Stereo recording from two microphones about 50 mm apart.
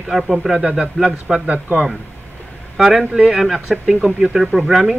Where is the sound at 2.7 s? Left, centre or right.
Centre.